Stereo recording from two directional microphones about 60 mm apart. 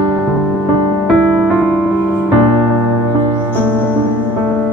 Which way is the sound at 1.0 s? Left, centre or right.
Centre.